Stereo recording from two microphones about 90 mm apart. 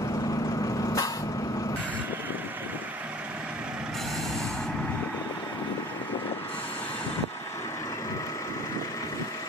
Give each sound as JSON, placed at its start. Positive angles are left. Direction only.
{"t": 0.8, "sound": "vehicle", "side_deg": 40}